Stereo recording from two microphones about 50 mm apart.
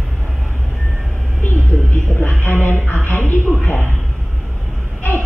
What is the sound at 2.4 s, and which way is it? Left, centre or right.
A woman's voice, left.